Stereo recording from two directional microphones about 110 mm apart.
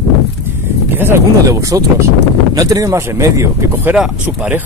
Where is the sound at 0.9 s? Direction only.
20° right (ahead or behind).